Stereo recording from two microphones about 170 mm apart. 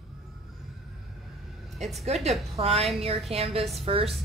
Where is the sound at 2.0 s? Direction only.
40° right (ahead or behind).